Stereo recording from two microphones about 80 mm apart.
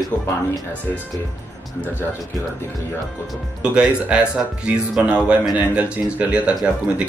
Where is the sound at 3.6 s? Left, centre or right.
Centre.